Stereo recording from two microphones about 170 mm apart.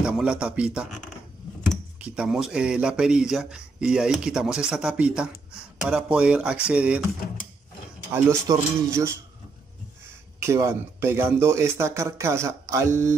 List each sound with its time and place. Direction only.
0.0 s speech: 5° right (ahead or behind)
8.1 s speech: 15° right (ahead or behind)
10.4 s speech: 15° right (ahead or behind)